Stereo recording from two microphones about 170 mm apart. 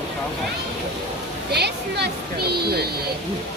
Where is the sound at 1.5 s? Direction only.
80° right.